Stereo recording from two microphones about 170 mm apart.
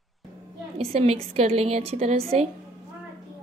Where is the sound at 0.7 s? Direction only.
35° right (ahead or behind).